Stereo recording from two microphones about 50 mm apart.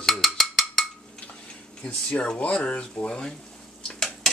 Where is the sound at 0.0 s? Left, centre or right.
Centre.